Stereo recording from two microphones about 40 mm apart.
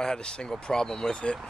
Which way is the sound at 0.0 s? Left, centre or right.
Left.